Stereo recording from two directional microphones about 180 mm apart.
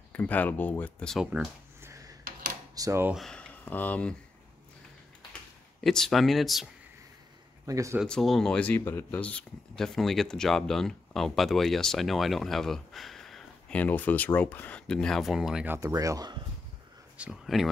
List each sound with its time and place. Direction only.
0.1 s speech: 10° left (ahead or behind); by 3.2 s 15° right (ahead or behind)
3.2 s speech: 5° left (ahead or behind)
5.9 s speech: centre (ahead or behind)
7.6 s speech: 15° right (ahead or behind)
8.0 s speech: centre (ahead or behind); by 16.3 s 20° right (ahead or behind)
17.2 s speech: centre (ahead or behind)